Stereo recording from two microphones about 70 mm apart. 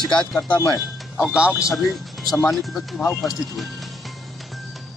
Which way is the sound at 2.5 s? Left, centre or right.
Centre.